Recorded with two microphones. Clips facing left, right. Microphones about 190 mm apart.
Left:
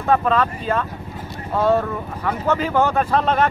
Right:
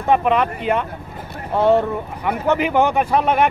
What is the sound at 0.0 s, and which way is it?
Speech, 15° right (ahead or behind).